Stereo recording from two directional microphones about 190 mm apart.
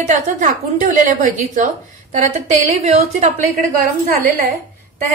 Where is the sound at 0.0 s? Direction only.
40° right (ahead or behind).